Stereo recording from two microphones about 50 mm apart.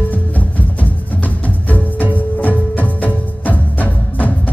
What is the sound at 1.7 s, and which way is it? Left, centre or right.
Music, left.